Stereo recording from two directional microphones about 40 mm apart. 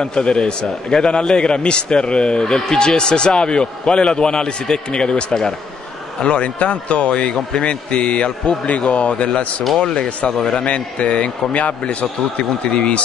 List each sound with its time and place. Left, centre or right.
0.0 s a man's voice: left
6.2 s a man's voice: left; by 10.6 s centre
10.6 s a man's voice: left